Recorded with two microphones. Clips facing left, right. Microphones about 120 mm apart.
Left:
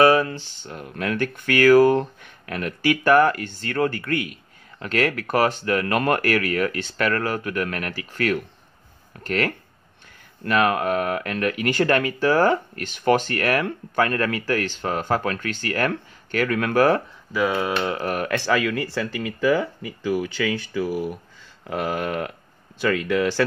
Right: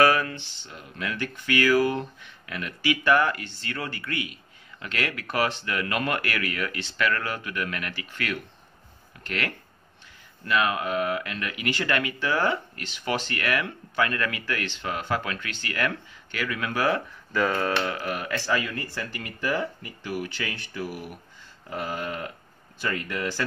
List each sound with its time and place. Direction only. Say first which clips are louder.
0.0 s speech: left 5 dB; 30° left (ahead or behind)
0.6 s speech: left 6 dB; 45° left (ahead or behind)
17.3 s speech: left 2 dB; 10° left (ahead or behind)
18.0 s speech: left 6 dB; 50° left (ahead or behind); by 19.0 s 90° left
21.6 s speech: left 6 dB; 75° left (ahead or behind)
22.8 s speech: left 9 dB; 90° left